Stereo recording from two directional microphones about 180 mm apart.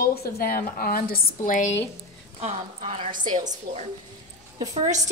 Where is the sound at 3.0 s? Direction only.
45° right (ahead or behind).